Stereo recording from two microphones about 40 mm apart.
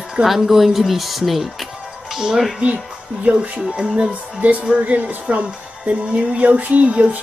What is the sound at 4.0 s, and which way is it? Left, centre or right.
Speech, right.